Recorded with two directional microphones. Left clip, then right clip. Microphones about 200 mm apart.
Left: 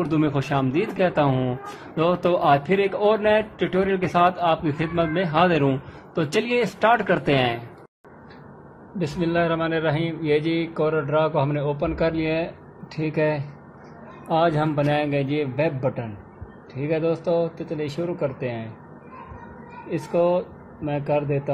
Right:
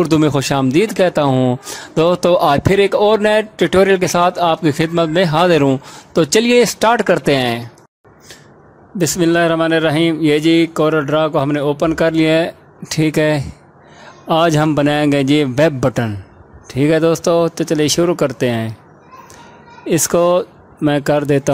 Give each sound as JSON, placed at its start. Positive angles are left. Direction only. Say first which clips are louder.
{"t": 0.0, "sound": "speech", "louder": "right 9 dB", "side_deg": -55}
{"t": 9.0, "sound": "a man's voice", "louder": "right 9 dB", "side_deg": -55}
{"t": 19.9, "sound": "speech", "louder": "right 8 dB", "side_deg": -55}